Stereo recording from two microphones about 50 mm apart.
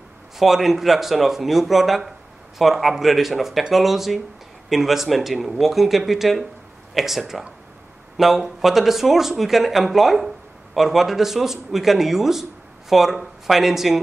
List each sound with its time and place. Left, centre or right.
0.4 s speech: centre